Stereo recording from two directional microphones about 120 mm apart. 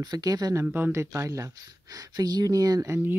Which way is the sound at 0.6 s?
15° right (ahead or behind).